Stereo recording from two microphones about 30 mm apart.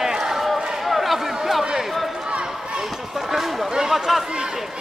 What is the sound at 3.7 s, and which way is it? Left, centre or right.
Speech, centre.